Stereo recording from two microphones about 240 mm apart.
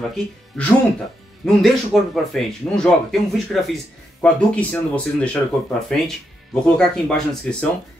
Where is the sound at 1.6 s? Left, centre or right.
Centre.